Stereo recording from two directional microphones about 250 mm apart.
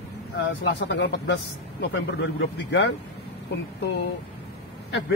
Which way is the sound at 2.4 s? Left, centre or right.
Left.